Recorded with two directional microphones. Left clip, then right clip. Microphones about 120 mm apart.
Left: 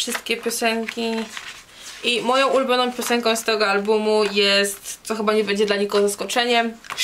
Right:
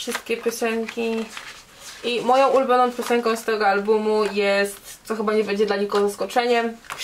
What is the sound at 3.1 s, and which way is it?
Speech, 25° left (ahead or behind).